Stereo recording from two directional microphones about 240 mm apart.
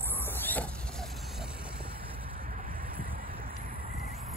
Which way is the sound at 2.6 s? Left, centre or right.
Right.